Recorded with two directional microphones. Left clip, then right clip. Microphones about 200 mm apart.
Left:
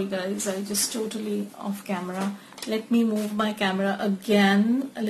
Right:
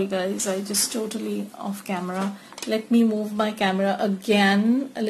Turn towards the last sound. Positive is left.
turn(degrees=-35)  # may be behind; listen again after turning